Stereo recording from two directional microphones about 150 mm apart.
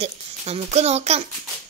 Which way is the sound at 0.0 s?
45° right (ahead or behind).